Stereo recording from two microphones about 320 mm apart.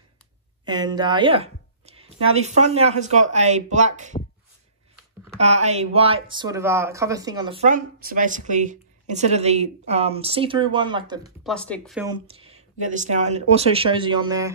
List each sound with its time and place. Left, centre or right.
0.7 s a woman's voice: centre
5.4 s a woman's voice: right
11.4 s speech: centre
12.1 s a woman's voice: centre